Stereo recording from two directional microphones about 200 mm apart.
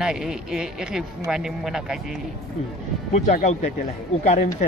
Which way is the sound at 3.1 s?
35° left (ahead or behind).